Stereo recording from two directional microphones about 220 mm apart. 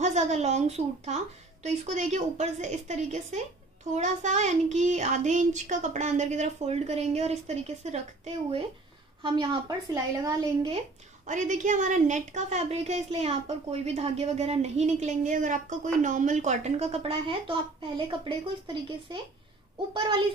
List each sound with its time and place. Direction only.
0.0 s a woman's voice: 30° right (ahead or behind)
9.2 s a woman's voice: 20° right (ahead or behind)
11.2 s a woman's voice: 35° right (ahead or behind)
19.9 s a woman's voice: 20° right (ahead or behind)